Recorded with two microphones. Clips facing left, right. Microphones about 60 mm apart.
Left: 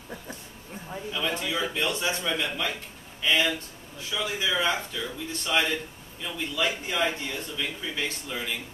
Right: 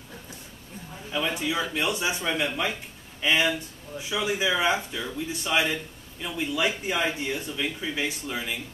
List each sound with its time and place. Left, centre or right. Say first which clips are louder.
1.1 s speech: right 3 dB; centre